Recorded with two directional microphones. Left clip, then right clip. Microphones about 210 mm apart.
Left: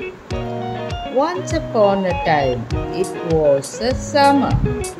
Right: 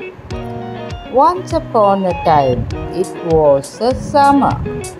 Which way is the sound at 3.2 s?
Centre (ahead or behind).